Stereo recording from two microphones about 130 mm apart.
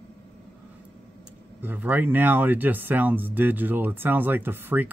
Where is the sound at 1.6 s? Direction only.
15° right (ahead or behind).